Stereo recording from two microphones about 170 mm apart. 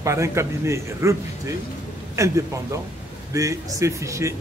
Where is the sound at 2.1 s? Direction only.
20° right (ahead or behind).